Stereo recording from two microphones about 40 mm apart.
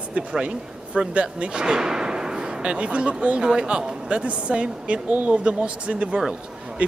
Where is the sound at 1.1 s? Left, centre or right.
Right.